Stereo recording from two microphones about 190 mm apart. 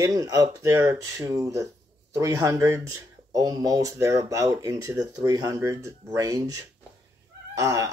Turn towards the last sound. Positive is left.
turn(degrees=-15)  # may be behind; listen again after turning